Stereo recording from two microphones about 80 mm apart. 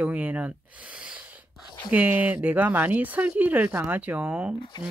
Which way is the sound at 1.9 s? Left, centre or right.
Centre.